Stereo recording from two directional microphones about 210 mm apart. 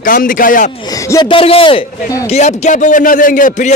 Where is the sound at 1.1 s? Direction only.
20° left (ahead or behind).